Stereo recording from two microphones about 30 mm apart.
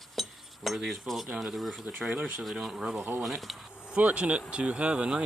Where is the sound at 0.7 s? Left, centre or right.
Centre.